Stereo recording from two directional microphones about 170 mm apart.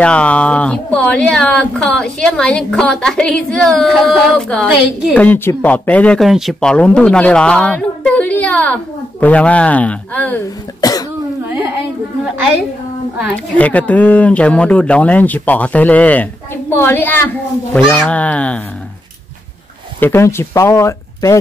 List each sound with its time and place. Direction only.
0.0 s a woman's voice: 5° left (ahead or behind)
10.8 s cough: 20° left (ahead or behind)
11.4 s a sound: 10° right (ahead or behind)
13.6 s speech: 10° left (ahead or behind)
20.0 s speech: 15° left (ahead or behind)